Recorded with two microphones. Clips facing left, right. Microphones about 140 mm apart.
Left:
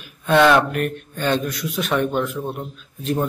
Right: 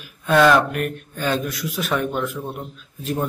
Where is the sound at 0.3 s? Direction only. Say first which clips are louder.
Left 1 dB; centre (ahead or behind).